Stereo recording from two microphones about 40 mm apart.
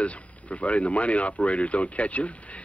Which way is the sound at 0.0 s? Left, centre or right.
Left.